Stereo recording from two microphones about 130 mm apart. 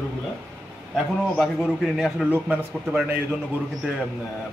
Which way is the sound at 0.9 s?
Centre (ahead or behind).